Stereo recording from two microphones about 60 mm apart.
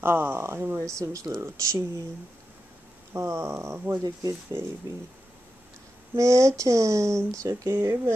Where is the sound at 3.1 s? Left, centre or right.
Right.